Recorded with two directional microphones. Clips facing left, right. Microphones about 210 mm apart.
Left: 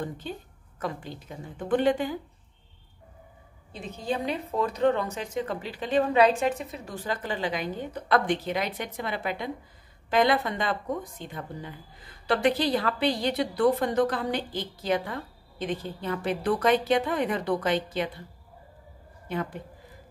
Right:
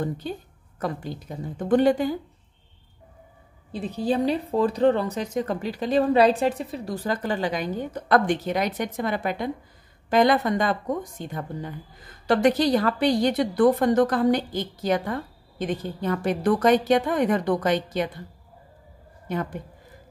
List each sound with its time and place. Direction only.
0.7 s a woman's voice: 40° right (ahead or behind)
3.7 s a woman's voice: 35° right (ahead or behind)
19.2 s a woman's voice: 45° right (ahead or behind)